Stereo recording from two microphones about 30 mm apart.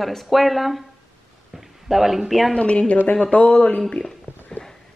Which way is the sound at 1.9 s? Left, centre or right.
Centre.